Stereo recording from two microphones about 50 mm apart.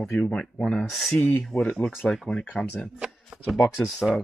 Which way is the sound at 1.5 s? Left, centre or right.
Left.